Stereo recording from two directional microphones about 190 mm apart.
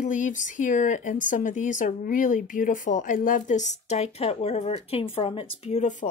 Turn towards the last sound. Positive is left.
turn(degrees=40)  # may be behind; listen again after turning